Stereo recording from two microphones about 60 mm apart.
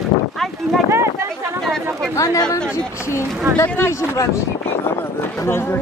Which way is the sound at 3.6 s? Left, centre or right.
Left.